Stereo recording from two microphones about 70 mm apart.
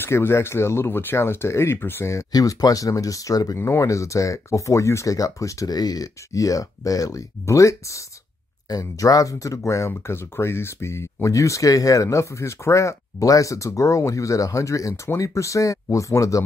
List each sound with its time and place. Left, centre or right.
0.0 s speech: left
2.3 s speech: left
3.5 s speech: left
8.6 s speech: left